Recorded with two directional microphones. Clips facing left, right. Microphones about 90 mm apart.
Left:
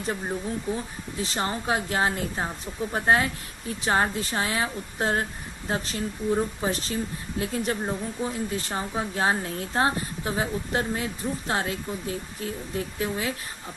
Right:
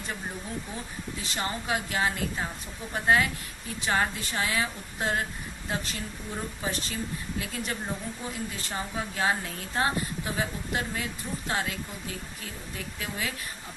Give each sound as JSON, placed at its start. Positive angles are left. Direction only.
{"t": 1.2, "sound": "a woman's voice", "side_deg": 35}